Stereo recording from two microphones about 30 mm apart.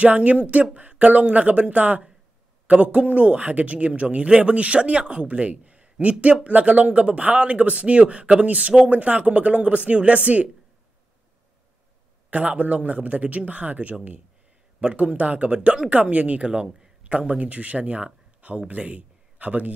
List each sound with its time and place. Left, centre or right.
0.0 s speech: right
12.3 s speech: right
14.8 s speech: right
16.4 s a man's voice: right
17.4 s a man's voice: right